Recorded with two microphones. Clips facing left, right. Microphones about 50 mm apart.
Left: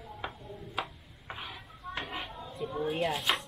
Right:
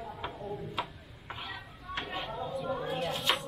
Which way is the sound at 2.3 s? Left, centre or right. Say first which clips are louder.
Right 2 dB; right.